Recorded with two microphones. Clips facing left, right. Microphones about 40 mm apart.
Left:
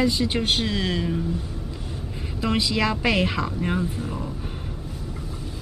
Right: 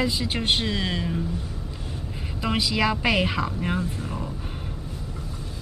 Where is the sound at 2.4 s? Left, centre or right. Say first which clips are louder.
Left 1 dB; centre.